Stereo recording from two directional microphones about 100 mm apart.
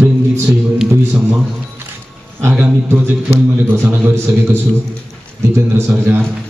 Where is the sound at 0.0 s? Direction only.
5° right (ahead or behind).